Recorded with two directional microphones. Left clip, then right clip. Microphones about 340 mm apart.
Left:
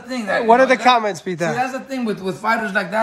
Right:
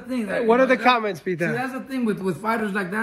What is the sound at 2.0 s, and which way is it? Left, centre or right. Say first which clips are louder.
Speech: left 4 dB; centre.